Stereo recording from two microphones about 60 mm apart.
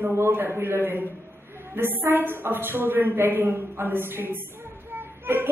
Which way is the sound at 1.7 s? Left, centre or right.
Right.